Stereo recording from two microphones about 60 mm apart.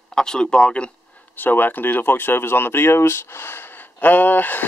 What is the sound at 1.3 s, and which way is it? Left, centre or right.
Speech, left.